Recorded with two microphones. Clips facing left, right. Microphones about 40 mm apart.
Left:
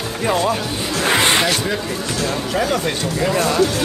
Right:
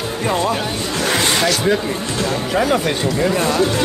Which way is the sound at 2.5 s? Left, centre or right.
Centre.